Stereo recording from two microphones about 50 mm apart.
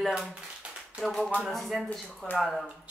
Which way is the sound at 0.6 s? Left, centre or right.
Centre.